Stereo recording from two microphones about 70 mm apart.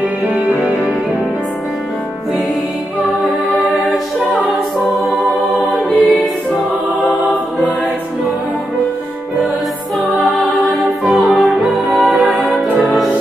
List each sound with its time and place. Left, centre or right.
3.2 s music: centre
5.6 s music: centre
10.5 s music: centre
12.1 s music: right
12.4 s music: centre